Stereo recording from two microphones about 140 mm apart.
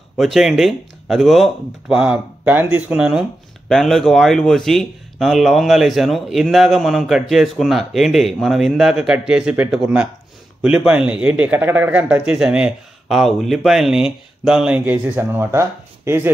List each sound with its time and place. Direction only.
0.2 s a man's voice: centre (ahead or behind)